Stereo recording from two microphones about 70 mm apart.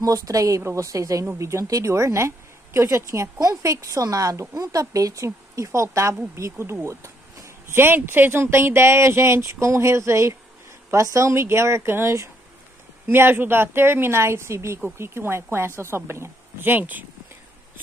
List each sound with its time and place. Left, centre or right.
0.0 s speech: right